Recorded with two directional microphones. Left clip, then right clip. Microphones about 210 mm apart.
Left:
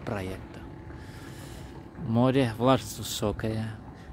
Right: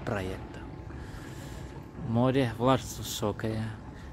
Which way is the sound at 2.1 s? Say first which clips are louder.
Left 2 dB; 20° left (ahead or behind).